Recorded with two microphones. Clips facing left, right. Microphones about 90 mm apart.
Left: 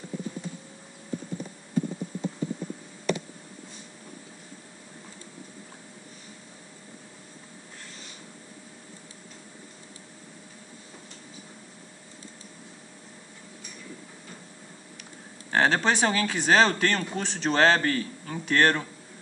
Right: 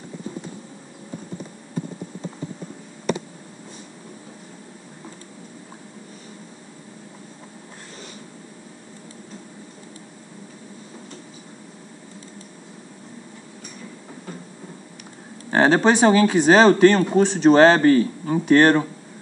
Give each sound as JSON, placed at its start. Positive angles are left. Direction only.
{"t": 15.5, "sound": "speech", "side_deg": -20}